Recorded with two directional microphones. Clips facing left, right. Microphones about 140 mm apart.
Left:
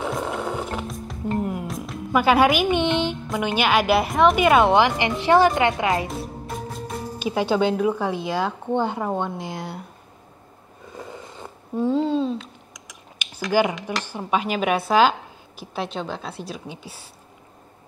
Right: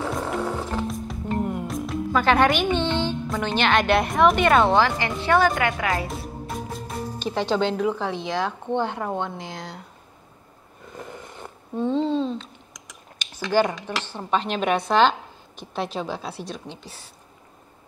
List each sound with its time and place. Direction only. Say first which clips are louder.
0.4 s music: right 1 dB; 15° left (ahead or behind)
0.8 s music: even; centre (ahead or behind)
2.1 s speech: left 2 dB; 5° left (ahead or behind)
2.8 s music: left 2 dB; 15° left (ahead or behind)
3.3 s a woman's voice: left 1 dB; 10° left (ahead or behind)
4.6 s a woman's voice: left 2 dB; 20° left (ahead or behind)
6.0 s speech: left 1 dB; centre (ahead or behind)
10.9 s speech: left 1 dB; 15° left (ahead or behind)